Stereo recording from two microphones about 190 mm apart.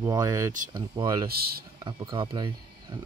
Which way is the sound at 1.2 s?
55° right (ahead or behind).